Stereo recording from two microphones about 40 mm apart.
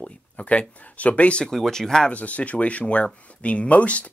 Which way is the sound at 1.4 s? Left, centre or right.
Centre.